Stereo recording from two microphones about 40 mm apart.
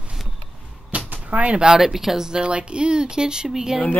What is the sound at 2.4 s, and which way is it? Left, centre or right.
Speech, right.